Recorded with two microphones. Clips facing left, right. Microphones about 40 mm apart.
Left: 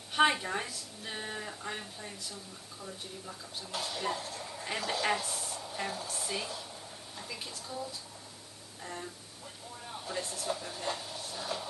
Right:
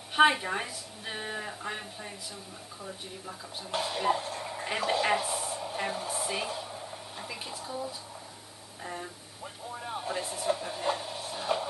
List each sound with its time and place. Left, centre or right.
0.1 s a woman's voice: centre
3.7 s a woman's voice: right
9.8 s a sound: right
10.1 s speech: centre